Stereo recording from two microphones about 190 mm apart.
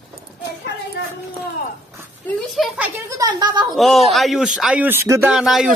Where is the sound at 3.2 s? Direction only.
20° right (ahead or behind).